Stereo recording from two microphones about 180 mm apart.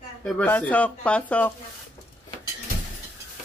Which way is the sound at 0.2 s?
10° left (ahead or behind).